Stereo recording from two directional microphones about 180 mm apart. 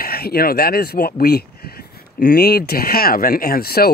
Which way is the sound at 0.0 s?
60° left (ahead or behind).